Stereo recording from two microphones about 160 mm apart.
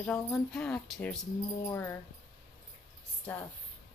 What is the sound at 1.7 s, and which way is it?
Speech, 15° left (ahead or behind).